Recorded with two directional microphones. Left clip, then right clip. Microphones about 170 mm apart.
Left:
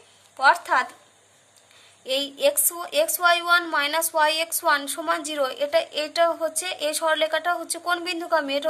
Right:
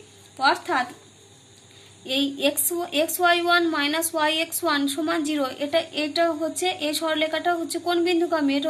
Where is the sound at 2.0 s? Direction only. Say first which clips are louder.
Left 1 dB; 45° left (ahead or behind).